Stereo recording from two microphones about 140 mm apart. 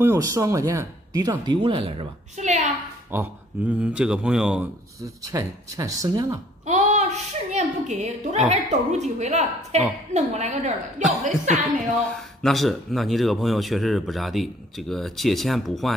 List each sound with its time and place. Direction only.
0.0 s speech: 25° right (ahead or behind)
1.4 s a woman's voice: 35° right (ahead or behind)
2.4 s a sound: 55° right (ahead or behind)
3.1 s speech: 15° right (ahead or behind)
5.0 s speech: 25° right (ahead or behind)
6.6 s a woman's voice: 55° right (ahead or behind)
12.1 s speech: 5° left (ahead or behind)